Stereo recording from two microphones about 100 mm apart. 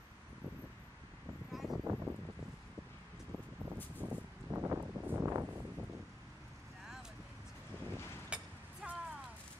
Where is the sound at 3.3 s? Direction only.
20° right (ahead or behind).